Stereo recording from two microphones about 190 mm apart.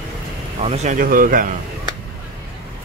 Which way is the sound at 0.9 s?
45° right (ahead or behind).